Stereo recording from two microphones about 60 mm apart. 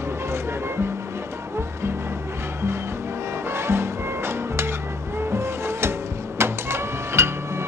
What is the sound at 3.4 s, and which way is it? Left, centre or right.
Music, right.